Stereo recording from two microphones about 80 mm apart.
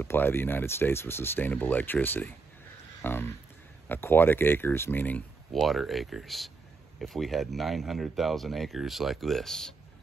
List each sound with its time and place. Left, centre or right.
0.0 s speech: left
3.0 s a sound: left
3.9 s speech: left
5.5 s speech: centre